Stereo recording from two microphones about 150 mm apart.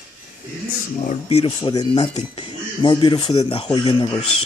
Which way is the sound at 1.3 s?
35° left (ahead or behind).